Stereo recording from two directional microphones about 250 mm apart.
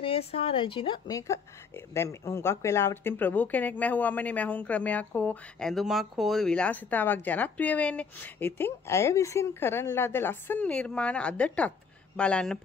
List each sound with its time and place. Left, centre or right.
0.0 s a woman's voice: left; by 12.5 s centre